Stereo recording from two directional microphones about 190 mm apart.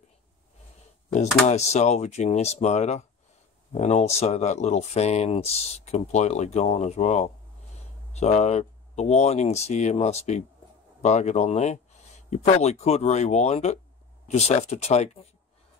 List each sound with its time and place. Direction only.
1.5 s speech: 35° left (ahead or behind)